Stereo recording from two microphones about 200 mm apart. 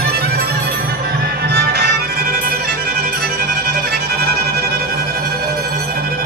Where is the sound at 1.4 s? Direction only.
55° right (ahead or behind).